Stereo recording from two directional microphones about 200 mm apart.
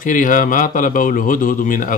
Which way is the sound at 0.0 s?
40° left (ahead or behind).